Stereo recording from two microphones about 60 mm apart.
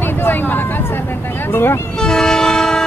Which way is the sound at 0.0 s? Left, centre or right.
Left.